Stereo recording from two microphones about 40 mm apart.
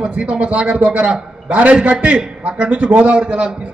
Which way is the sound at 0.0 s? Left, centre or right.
Right.